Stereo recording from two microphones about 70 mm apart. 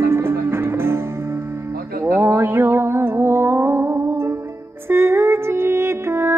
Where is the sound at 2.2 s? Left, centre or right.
Right.